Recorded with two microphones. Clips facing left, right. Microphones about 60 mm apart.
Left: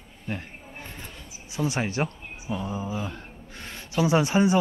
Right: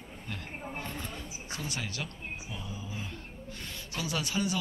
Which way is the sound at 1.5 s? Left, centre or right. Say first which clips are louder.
Left 11 dB; centre.